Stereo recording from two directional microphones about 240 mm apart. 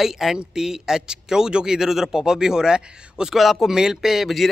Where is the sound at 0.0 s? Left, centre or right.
Centre.